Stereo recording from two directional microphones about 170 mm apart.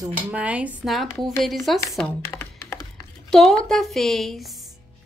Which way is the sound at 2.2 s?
15° left (ahead or behind).